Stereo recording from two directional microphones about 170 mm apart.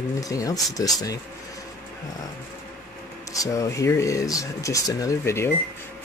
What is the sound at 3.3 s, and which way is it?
Speech, 20° left (ahead or behind).